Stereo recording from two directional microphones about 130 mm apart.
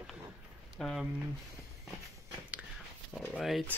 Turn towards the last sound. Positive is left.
turn(degrees=0)  # may be behind; listen again after turning